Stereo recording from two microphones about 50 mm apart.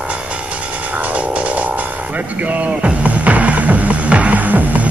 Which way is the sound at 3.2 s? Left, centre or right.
Right.